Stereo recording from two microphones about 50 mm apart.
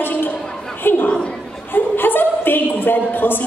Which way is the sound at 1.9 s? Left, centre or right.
Left.